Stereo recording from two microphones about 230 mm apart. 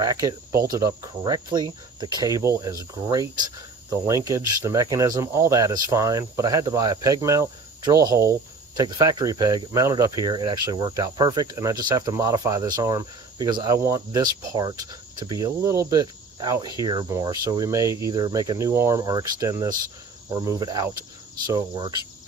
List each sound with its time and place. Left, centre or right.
0.0 s speech: centre